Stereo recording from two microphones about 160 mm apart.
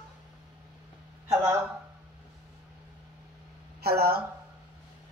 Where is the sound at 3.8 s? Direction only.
80° right.